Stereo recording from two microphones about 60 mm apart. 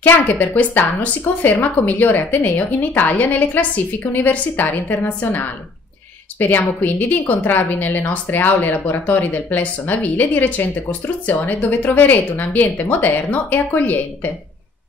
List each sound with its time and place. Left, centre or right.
0.0 s a woman's voice: left
6.4 s a woman's voice: left